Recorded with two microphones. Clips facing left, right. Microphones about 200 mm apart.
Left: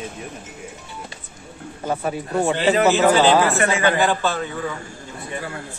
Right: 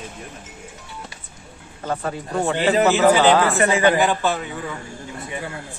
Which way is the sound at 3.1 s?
15° right (ahead or behind).